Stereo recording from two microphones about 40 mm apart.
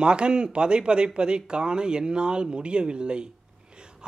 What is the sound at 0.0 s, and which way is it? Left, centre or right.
Speech, right.